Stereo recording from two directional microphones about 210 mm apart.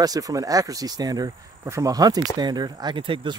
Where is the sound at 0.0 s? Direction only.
15° right (ahead or behind).